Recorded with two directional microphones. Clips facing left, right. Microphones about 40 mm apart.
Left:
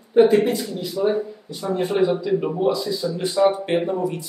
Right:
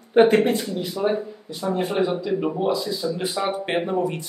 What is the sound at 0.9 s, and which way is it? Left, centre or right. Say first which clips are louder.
Speech: left 2 dB; centre.